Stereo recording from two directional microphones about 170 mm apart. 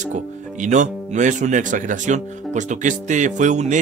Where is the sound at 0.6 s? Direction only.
45° right (ahead or behind).